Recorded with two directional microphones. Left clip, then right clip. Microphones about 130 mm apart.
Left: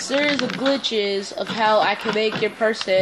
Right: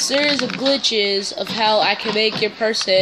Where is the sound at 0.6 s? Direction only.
25° right (ahead or behind).